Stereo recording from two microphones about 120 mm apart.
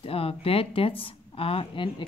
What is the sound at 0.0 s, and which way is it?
A woman's voice, 50° left (ahead or behind).